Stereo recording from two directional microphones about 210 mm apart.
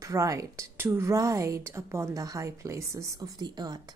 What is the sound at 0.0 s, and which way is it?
A woman's voice, 15° right (ahead or behind).